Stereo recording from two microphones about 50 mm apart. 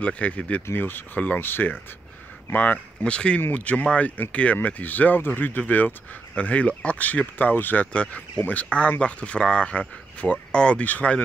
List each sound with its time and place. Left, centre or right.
0.0 s speech: left
0.7 s speech: left
3.0 s speech: left
7.9 s speech: left
8.6 s speech: left